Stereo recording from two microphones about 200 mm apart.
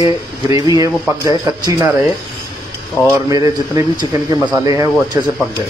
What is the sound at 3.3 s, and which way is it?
A man's voice, 20° right (ahead or behind).